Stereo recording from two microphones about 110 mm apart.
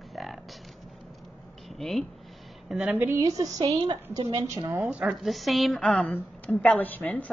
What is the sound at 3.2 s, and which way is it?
A woman's voice, 35° right (ahead or behind).